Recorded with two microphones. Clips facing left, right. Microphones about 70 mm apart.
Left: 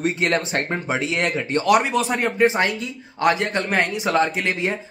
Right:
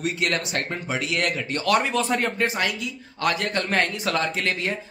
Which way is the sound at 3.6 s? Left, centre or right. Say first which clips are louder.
Left 2 dB; centre.